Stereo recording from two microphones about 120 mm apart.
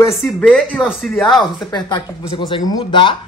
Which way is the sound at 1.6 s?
35° left (ahead or behind).